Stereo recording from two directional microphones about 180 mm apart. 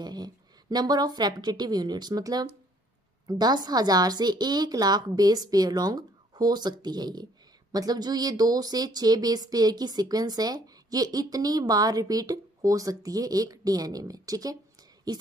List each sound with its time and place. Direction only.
0.0 s speech: 20° right (ahead or behind)